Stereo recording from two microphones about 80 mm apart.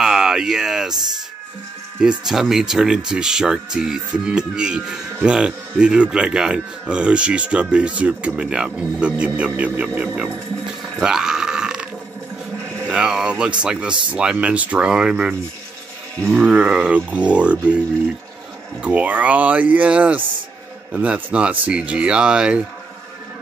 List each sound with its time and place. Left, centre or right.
0.0 s a sound: centre
2.0 s speech: centre
11.0 s burping: centre
12.8 s speech: centre
16.3 s speech: centre
18.8 s speech: centre